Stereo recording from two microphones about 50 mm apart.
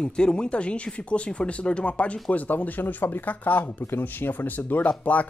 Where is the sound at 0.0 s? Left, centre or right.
Centre.